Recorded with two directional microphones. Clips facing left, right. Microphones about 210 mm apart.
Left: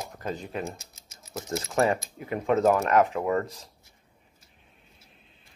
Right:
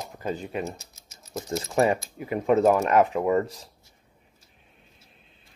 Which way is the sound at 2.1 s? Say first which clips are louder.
Right 3 dB; 10° right (ahead or behind).